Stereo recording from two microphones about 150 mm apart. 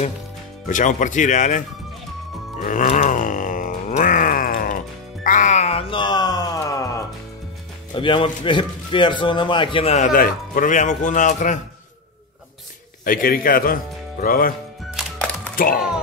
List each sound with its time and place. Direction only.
0.7 s a man's voice: 55° left (ahead or behind)
2.6 s grunt: 60° left (ahead or behind)
5.2 s music: 60° left (ahead or behind); by 7.0 s 20° left (ahead or behind)
7.9 s a man's voice: 35° left (ahead or behind)
9.9 s a man's voice: 65° left (ahead or behind)
13.0 s a man's voice: 70° left (ahead or behind)
15.5 s speech: 75° left (ahead or behind)